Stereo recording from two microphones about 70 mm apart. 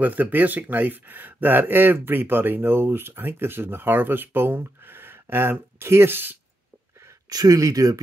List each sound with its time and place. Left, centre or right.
0.0 s speech: right
7.2 s speech: right